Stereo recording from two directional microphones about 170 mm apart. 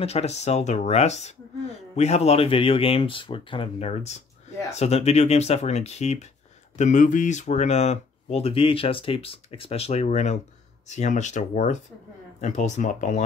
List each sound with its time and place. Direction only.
0.0 s speech: 40° left (ahead or behind)